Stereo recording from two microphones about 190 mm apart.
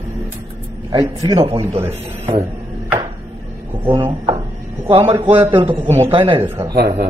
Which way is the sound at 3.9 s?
25° right (ahead or behind).